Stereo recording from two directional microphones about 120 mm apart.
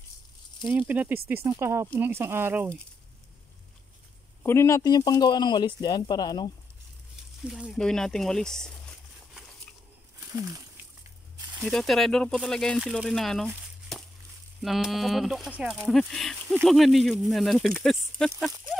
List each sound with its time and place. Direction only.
0.7 s speech: 15° right (ahead or behind)
4.4 s speech: 20° left (ahead or behind)
7.4 s speech: 5° right (ahead or behind)
7.8 s speech: 5° left (ahead or behind)
10.2 s speech: 25° right (ahead or behind)
11.5 s speech: centre (ahead or behind)
14.6 s speech: centre (ahead or behind)